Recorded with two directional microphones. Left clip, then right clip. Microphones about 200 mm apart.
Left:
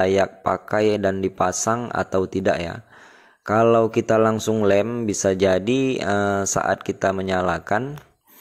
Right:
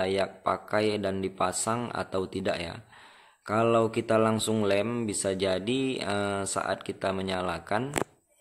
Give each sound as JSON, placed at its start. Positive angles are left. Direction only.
{"t": 0.0, "sound": "speech", "side_deg": 30}